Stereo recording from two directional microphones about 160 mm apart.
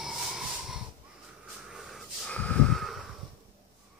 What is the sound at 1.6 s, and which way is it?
Snort, centre (ahead or behind).